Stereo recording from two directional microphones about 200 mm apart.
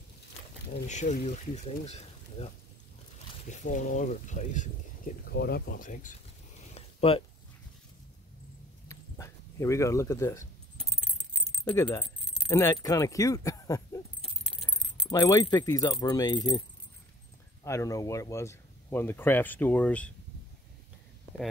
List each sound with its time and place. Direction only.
0.8 s speech: 35° left (ahead or behind)
5.2 s speech: 50° left (ahead or behind)
6.7 s a sound: 30° left (ahead or behind)
8.8 s a sound: 15° left (ahead or behind)
11.5 s speech: 10° left (ahead or behind)
15.0 s speech: 15° left (ahead or behind)
17.6 s speech: 15° left (ahead or behind)